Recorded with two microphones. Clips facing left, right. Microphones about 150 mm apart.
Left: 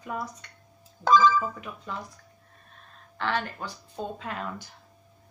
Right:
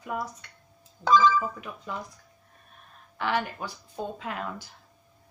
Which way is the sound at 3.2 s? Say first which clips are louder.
Right 1 dB; 10° right (ahead or behind).